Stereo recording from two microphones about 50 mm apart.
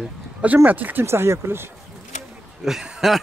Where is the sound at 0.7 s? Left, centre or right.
Right.